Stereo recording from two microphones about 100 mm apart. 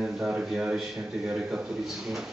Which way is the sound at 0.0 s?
5° right (ahead or behind).